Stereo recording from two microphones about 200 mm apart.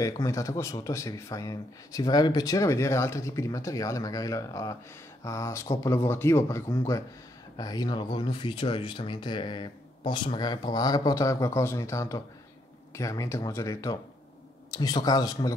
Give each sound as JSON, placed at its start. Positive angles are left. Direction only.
{"t": 0.0, "sound": "speech", "side_deg": 15}